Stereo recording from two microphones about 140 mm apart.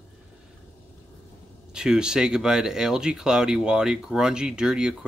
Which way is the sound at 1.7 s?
5° right (ahead or behind).